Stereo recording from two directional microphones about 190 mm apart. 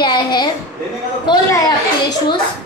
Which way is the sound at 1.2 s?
20° left (ahead or behind).